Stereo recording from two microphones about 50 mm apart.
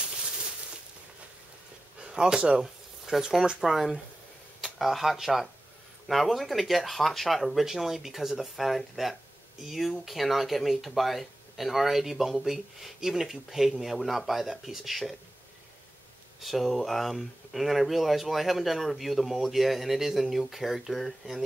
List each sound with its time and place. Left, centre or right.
2.0 s a sound: centre
3.6 s speech: centre
16.3 s speech: centre